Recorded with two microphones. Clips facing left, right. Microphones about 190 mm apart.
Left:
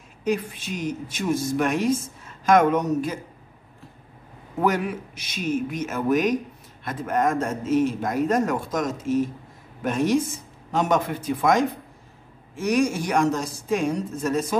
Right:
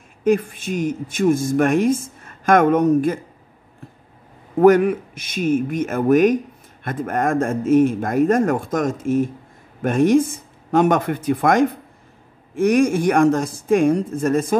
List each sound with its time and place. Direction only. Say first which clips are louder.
0.2 s speech: right 7 dB; 50° right (ahead or behind)
4.6 s speech: right 11 dB; 55° right (ahead or behind)